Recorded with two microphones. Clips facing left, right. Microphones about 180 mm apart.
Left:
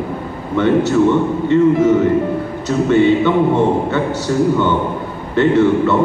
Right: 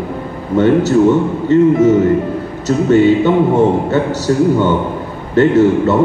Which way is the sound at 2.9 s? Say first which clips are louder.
Right 2 dB; 40° right (ahead or behind).